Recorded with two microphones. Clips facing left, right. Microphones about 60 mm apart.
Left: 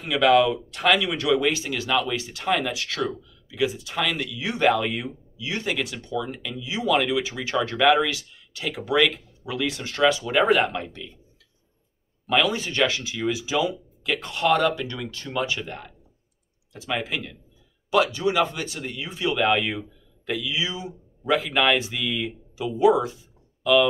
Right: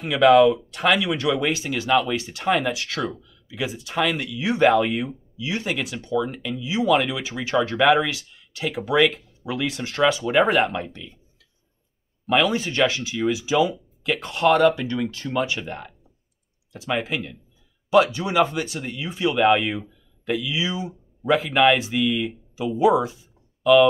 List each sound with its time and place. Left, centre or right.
0.0 s speech: centre
10.6 s speech: centre
12.4 s speech: right